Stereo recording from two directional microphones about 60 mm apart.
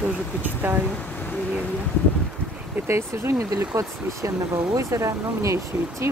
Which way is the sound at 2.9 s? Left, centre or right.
Right.